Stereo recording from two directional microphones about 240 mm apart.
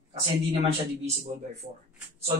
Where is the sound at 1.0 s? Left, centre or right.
Right.